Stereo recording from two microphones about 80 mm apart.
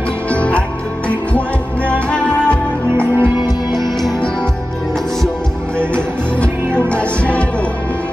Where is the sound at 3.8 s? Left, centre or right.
Centre.